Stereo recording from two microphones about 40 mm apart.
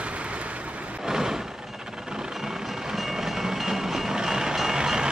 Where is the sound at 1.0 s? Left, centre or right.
Centre.